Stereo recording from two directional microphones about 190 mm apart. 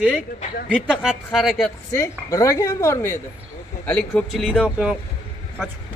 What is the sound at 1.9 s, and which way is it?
A woman's voice, 15° left (ahead or behind).